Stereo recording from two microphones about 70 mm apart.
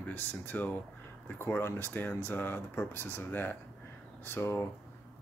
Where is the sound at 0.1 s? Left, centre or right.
Left.